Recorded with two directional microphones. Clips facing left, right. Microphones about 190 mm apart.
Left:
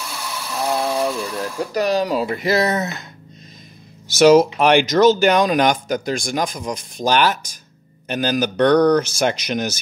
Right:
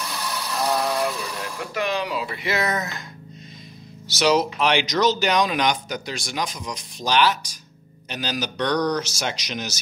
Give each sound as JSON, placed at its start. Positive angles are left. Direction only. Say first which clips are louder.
{"t": 0.0, "sound": "a sound", "louder": "even", "side_deg": 0}
{"t": 1.4, "sound": "speech", "louder": "left 7 dB", "side_deg": 40}
{"t": 4.1, "sound": "speech", "louder": "left 9 dB", "side_deg": 50}